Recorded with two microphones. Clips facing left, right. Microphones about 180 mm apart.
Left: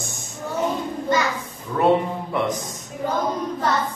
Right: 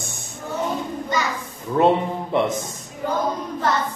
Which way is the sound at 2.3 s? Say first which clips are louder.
Right 3 dB; 25° right (ahead or behind).